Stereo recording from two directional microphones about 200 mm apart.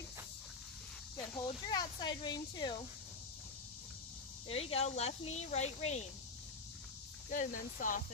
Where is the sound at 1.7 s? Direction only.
20° left (ahead or behind).